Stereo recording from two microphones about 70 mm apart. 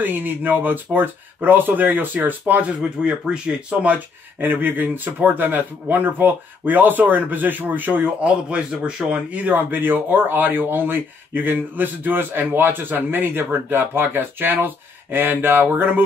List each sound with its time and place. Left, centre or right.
0.0 s speech: right
2.8 s speech: centre
3.9 s speech: right